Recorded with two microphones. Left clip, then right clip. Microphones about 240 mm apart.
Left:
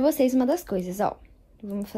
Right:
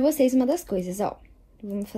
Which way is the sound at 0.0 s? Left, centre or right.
Left.